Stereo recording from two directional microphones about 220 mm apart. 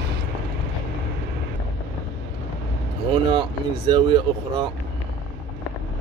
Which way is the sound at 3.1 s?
20° right (ahead or behind).